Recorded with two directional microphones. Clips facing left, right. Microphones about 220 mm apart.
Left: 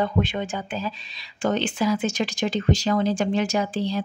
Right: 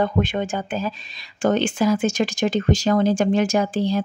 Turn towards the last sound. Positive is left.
turn(degrees=-45)  # may be behind; listen again after turning